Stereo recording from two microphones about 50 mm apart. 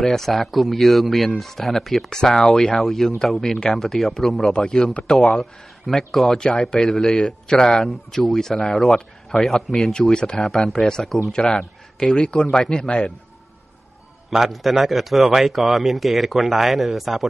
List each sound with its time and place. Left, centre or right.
0.0 s a man's voice: centre
10.4 s a man's voice: centre
14.3 s a man's voice: centre